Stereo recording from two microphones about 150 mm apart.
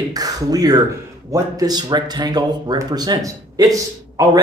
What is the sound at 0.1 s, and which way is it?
Speech, 25° right (ahead or behind).